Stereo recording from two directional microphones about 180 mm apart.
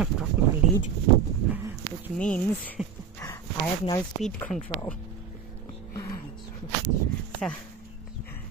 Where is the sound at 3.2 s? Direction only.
15° left (ahead or behind).